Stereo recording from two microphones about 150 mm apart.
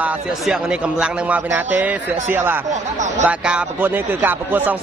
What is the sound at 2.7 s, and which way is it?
Speech, 55° right (ahead or behind).